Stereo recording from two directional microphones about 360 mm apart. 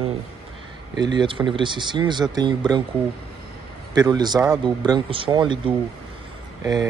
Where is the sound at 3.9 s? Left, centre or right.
Centre.